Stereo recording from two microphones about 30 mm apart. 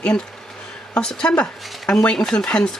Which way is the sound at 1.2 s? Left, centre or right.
Left.